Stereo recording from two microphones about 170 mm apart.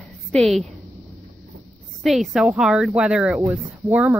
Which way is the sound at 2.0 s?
Centre (ahead or behind).